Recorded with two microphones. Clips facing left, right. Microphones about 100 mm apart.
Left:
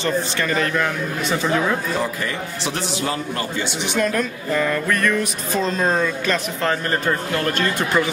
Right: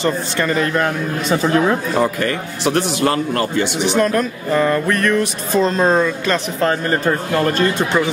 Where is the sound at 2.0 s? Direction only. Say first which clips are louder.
Right 6 dB; 60° right (ahead or behind).